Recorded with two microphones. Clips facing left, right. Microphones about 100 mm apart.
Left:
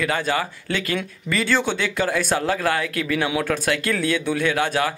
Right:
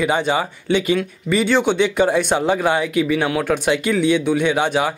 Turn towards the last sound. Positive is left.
turn(degrees=-15)  # may be behind; listen again after turning